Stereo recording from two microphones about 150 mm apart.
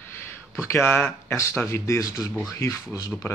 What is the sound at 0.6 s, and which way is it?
Speech, 15° left (ahead or behind).